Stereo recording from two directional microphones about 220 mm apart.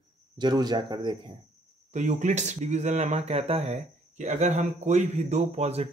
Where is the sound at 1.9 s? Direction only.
35° right (ahead or behind).